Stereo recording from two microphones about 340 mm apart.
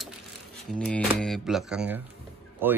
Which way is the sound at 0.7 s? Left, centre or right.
Centre.